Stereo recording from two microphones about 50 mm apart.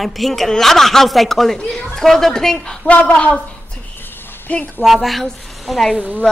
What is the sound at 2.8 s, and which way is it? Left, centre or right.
A woman's voice, left.